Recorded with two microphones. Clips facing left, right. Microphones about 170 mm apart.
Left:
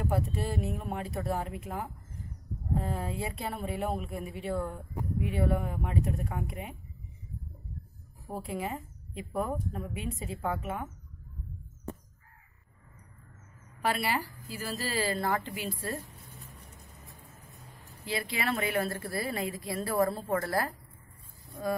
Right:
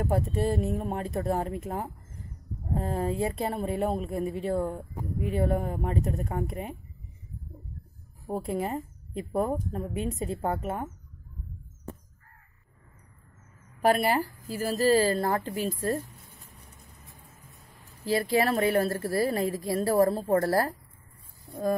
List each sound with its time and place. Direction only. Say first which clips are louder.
0.0 s a woman's voice: right 5 dB; 45° right (ahead or behind)
8.3 s a woman's voice: right 5 dB; 40° right (ahead or behind)
13.8 s a woman's voice: right 7 dB; 45° right (ahead or behind)
17.5 s a sound: left 2 dB; 20° left (ahead or behind)
18.0 s a woman's voice: right 8 dB; 40° right (ahead or behind)